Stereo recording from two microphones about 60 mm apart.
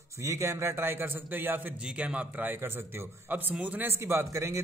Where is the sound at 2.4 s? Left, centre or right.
Right.